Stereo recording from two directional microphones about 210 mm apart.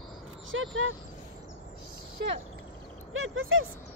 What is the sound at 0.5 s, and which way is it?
Speech, 70° right (ahead or behind).